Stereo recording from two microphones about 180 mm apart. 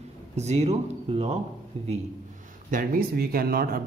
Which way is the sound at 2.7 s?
50° right (ahead or behind).